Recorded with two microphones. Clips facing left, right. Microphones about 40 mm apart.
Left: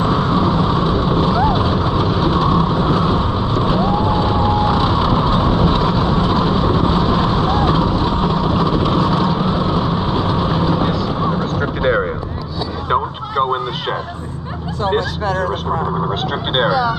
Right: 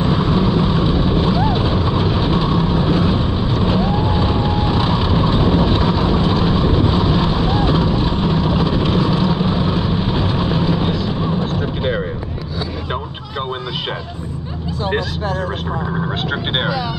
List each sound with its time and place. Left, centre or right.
0.4 s vehicle: right
1.4 s vehicle: centre
4.0 s vehicle: centre
16.6 s vehicle: right